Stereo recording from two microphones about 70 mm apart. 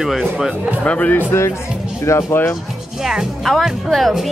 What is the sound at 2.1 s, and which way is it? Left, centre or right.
Speech, left.